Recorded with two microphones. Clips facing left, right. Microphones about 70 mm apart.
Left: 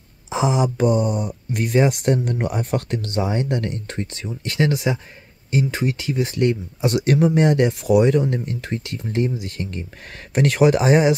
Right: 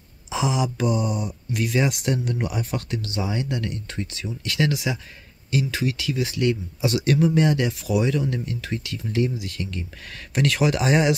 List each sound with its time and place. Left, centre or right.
0.3 s speech: left
7.0 s speech: left
8.3 s speech: left